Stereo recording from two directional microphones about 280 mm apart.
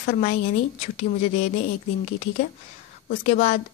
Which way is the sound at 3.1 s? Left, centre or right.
Left.